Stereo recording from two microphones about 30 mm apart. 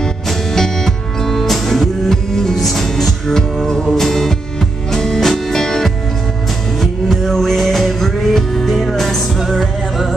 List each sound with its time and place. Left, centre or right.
0.6 s music: centre